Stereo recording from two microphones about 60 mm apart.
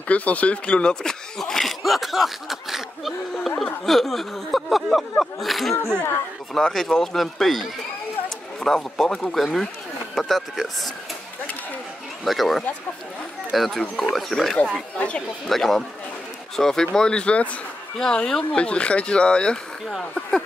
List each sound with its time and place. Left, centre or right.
0.1 s speech: left; by 10.7 s centre
12.3 s speech: centre
15.0 s speech: centre
15.4 s speech: centre